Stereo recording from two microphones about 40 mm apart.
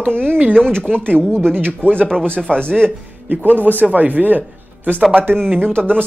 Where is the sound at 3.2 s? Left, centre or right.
Right.